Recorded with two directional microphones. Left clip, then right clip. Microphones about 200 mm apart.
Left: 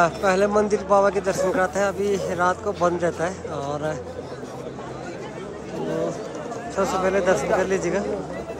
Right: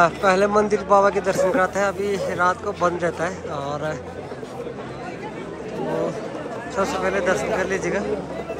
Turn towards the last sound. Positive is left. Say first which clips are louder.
# left 1 dB
turn(degrees=15)  # may be behind; listen again after turning